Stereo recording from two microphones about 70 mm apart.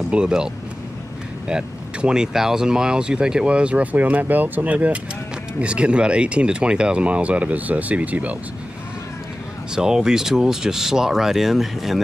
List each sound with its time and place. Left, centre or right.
0.1 s speech: centre
1.5 s speech: centre
9.8 s speech: centre